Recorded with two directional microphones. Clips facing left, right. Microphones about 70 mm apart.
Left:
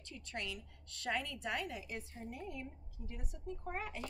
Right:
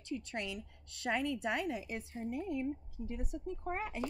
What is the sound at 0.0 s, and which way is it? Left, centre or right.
Speech, centre.